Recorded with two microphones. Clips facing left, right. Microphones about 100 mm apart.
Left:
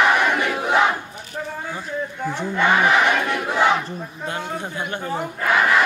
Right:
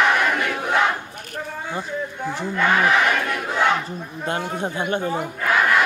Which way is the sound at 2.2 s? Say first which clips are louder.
Left 1 dB; centre (ahead or behind).